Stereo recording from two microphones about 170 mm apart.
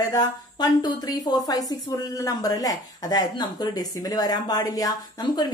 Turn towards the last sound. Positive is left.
turn(degrees=25)  # may be behind; listen again after turning